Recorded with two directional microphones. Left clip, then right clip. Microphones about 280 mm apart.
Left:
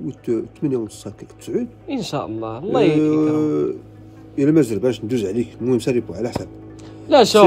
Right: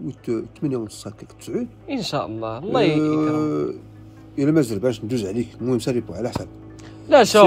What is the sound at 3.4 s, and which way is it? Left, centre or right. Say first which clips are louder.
Speech: left 4 dB; right.